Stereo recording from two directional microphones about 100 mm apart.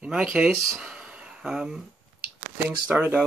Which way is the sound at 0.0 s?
10° right (ahead or behind).